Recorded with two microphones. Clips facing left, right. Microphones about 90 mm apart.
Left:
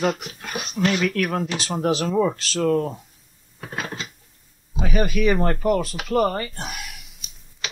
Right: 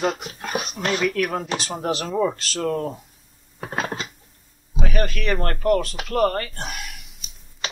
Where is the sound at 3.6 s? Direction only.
35° right (ahead or behind).